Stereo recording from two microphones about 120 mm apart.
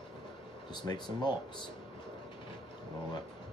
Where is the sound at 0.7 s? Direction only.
40° left (ahead or behind).